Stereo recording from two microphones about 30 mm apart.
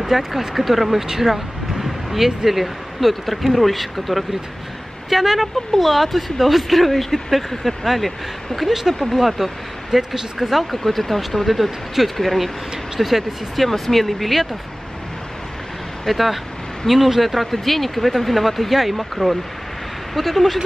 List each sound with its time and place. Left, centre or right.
0.1 s speech: centre
9.1 s speech: centre
13.6 s speech: centre
16.1 s speech: centre